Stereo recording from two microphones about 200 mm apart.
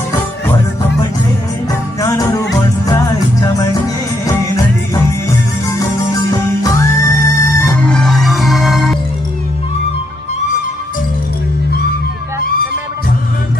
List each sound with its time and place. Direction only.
1.7 s music: 15° left (ahead or behind); by 8.9 s centre (ahead or behind)